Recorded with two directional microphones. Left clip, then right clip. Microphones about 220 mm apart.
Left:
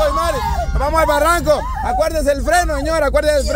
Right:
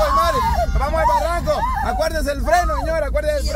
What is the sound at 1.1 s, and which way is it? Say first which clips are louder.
Speech: left 4 dB; 35° left (ahead or behind).